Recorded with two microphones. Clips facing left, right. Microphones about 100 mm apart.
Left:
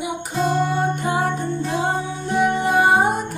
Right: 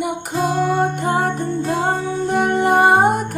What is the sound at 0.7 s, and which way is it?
Music, 55° right (ahead or behind).